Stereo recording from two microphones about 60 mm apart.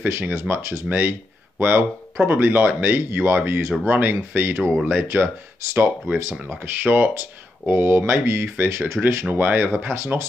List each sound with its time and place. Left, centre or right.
0.0 s speech: right
0.3 s speech: right
0.8 s speech: right
9.3 s speech: right
9.9 s speech: right